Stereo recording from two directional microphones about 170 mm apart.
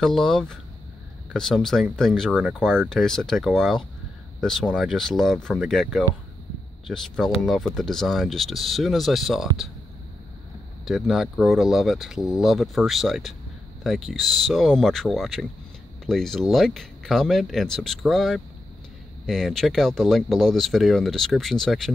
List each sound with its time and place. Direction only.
0.0 s speech: centre (ahead or behind)
10.9 s speech: centre (ahead or behind)